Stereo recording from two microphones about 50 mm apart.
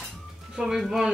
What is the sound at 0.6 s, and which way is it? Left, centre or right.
Speech, centre.